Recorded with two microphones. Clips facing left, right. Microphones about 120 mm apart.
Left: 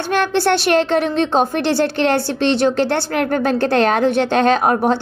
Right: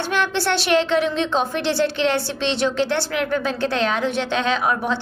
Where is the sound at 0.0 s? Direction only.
50° left (ahead or behind).